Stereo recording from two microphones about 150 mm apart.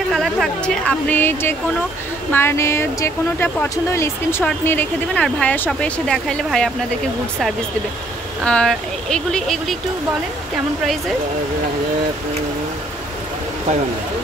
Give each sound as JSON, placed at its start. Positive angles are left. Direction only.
{"t": 0.1, "sound": "speech", "side_deg": 0}
{"t": 8.5, "sound": "speech", "side_deg": 5}